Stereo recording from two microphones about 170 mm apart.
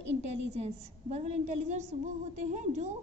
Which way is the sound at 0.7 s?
40° right (ahead or behind).